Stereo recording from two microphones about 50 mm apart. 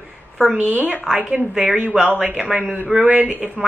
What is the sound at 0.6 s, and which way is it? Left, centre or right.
Speech, right.